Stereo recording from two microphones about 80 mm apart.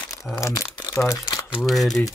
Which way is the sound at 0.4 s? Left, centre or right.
Left.